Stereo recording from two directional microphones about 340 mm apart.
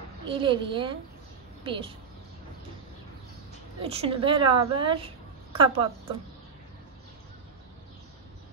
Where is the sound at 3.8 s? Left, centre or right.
Centre.